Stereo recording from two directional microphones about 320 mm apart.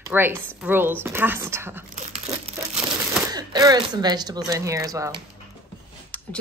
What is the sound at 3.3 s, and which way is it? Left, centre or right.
Speech, centre.